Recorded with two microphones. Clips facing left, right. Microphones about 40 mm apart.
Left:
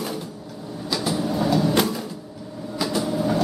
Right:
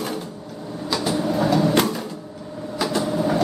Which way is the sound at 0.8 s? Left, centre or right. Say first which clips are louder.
Right 2 dB; centre.